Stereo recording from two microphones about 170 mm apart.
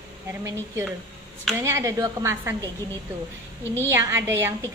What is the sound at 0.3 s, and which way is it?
A woman's voice, 15° right (ahead or behind).